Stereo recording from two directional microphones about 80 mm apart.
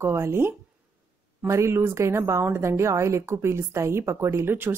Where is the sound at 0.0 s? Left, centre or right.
Right.